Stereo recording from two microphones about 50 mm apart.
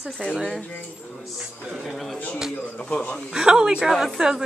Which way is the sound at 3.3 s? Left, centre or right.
Centre.